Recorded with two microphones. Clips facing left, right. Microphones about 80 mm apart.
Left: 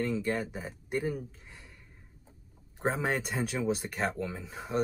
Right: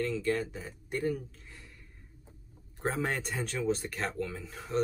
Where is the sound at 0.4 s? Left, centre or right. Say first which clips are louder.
Left 1 dB; centre.